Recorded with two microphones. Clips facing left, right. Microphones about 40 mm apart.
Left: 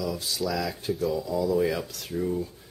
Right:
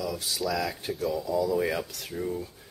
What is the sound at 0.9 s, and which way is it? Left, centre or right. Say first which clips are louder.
Speech: left 1 dB; centre.